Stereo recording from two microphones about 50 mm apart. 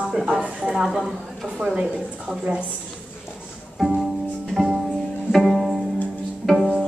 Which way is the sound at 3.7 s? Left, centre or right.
Centre.